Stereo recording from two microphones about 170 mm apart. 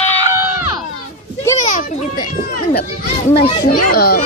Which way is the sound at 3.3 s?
35° left (ahead or behind).